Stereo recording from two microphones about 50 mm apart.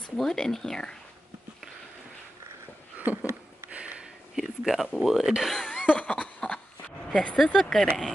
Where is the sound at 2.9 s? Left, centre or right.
Right.